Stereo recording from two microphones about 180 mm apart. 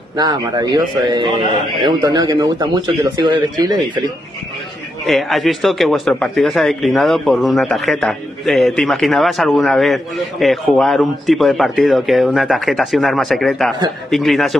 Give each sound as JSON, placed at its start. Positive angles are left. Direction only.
{"t": 0.2, "sound": "a man's voice", "side_deg": -25}
{"t": 5.0, "sound": "speech", "side_deg": 0}